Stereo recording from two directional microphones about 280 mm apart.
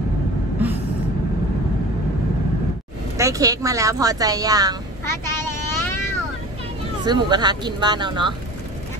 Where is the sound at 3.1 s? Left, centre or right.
Centre.